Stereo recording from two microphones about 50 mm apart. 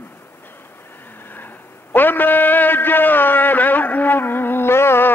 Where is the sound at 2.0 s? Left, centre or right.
Left.